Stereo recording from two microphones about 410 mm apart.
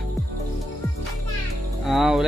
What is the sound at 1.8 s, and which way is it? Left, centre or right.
Music, centre.